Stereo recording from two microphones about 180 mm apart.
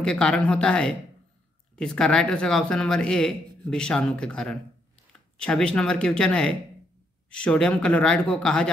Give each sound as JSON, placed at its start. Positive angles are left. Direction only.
{"t": 0.0, "sound": "speech", "side_deg": 5}